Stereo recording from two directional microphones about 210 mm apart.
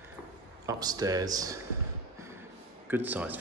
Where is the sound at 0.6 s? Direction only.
15° right (ahead or behind).